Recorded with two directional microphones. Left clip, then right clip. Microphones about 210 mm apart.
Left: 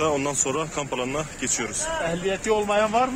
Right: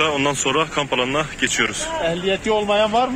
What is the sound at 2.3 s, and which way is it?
Speech, 35° right (ahead or behind).